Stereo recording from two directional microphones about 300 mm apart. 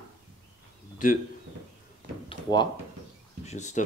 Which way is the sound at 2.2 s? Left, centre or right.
Centre.